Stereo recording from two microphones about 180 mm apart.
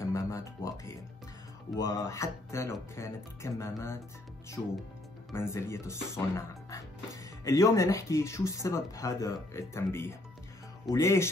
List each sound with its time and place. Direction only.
0.0 s music: 15° left (ahead or behind)
1.8 s speech: 20° left (ahead or behind)
5.3 s speech: 15° left (ahead or behind)